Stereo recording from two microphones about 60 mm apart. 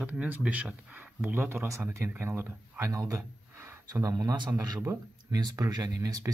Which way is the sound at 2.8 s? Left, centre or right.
Right.